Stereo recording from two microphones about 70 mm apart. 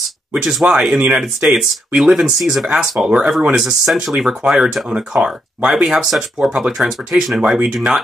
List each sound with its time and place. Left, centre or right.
0.4 s speech: centre
7.5 s speech: centre